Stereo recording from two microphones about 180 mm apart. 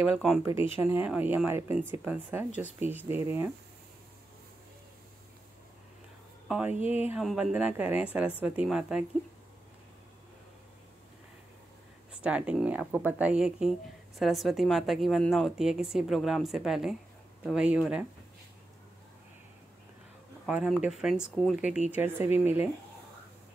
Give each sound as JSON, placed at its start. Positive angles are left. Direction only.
{"t": 0.0, "sound": "speech", "side_deg": -5}
{"t": 6.8, "sound": "speech", "side_deg": 35}
{"t": 7.1, "sound": "speech", "side_deg": -5}
{"t": 12.2, "sound": "speech", "side_deg": -5}
{"t": 20.4, "sound": "speech", "side_deg": 0}